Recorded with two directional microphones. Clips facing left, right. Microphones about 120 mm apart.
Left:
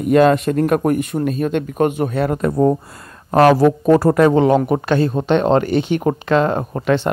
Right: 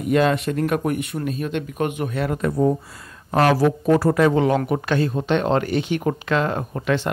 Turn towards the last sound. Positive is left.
turn(degrees=40)  # may be behind; listen again after turning